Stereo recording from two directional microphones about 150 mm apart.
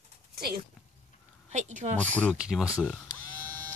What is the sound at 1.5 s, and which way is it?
Speech, 50° right (ahead or behind).